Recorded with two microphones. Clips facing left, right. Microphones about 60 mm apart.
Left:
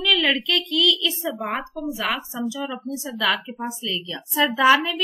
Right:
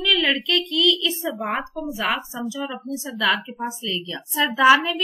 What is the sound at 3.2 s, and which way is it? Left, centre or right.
A woman's voice, centre.